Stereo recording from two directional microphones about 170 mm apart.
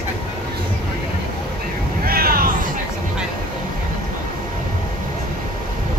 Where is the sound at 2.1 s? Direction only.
60° right (ahead or behind).